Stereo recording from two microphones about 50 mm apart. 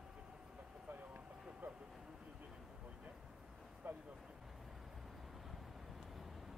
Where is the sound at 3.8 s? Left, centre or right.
Right.